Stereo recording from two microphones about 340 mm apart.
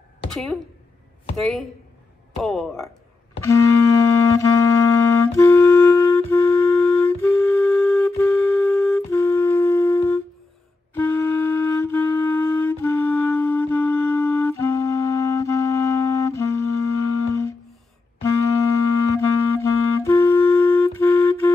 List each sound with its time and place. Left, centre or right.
0.3 s speech: centre
3.4 s clarinet: centre
10.9 s music: centre
18.2 s clarinet: centre